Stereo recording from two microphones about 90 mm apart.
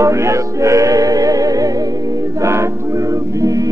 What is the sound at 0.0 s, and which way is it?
Music, 35° right (ahead or behind).